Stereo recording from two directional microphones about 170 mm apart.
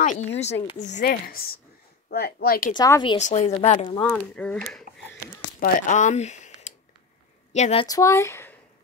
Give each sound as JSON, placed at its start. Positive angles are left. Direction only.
{"t": 0.0, "sound": "speech", "side_deg": 45}
{"t": 1.0, "sound": "speech", "side_deg": 60}
{"t": 2.7, "sound": "speech", "side_deg": 25}
{"t": 3.2, "sound": "speech", "side_deg": 45}
{"t": 4.0, "sound": "speech", "side_deg": 5}
{"t": 5.6, "sound": "speech", "side_deg": 50}
{"t": 7.8, "sound": "speech", "side_deg": 20}